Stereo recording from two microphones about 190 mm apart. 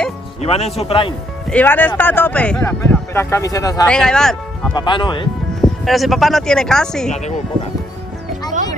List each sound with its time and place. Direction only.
0.4 s speech: 35° left (ahead or behind)
1.5 s speech: 10° left (ahead or behind)
3.8 s speech: 5° left (ahead or behind)
4.7 s speech: 25° left (ahead or behind)
5.6 s speech: centre (ahead or behind)
7.1 s speech: 40° left (ahead or behind)